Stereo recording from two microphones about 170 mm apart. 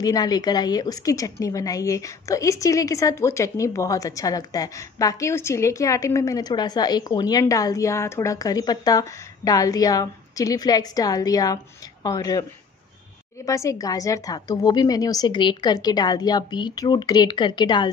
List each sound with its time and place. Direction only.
0.0 s a woman's voice: 20° left (ahead or behind)
13.5 s a woman's voice: 20° left (ahead or behind)